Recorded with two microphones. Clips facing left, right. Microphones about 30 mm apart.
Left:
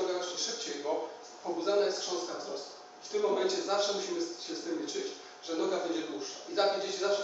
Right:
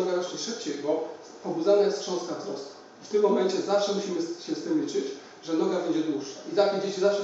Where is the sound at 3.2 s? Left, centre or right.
Centre.